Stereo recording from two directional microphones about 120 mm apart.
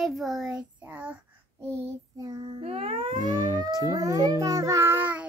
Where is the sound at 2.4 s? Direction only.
50° right (ahead or behind).